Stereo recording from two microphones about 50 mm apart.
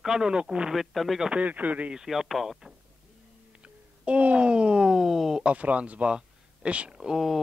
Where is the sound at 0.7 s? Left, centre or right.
Centre.